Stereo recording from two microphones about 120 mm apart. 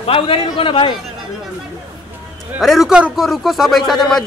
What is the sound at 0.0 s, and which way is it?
Speech, 50° left (ahead or behind).